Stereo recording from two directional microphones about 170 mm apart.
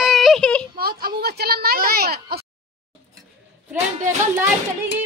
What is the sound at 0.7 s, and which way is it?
Speech, 65° right (ahead or behind).